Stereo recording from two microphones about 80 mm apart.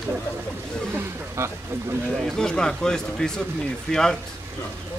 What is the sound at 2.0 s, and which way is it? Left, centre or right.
A woman's voice, centre.